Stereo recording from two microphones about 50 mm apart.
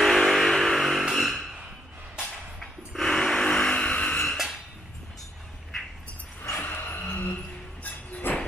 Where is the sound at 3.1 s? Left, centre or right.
Centre.